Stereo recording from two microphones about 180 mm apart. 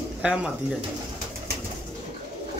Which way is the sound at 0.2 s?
5° right (ahead or behind).